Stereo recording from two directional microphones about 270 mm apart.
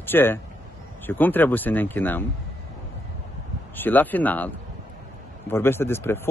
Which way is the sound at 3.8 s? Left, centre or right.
Centre.